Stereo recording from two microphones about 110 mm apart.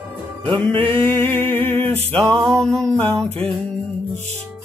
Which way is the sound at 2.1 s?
5° left (ahead or behind).